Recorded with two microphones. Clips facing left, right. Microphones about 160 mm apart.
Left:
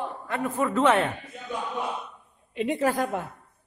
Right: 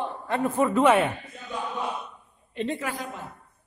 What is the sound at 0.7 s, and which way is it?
Speech, 10° right (ahead or behind).